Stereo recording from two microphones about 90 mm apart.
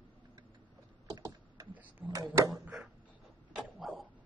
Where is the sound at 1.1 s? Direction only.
40° right (ahead or behind).